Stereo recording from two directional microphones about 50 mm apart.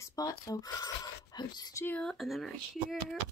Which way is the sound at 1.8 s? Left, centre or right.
Left.